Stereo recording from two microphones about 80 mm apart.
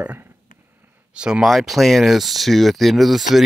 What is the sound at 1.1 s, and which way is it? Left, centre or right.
Speech, centre.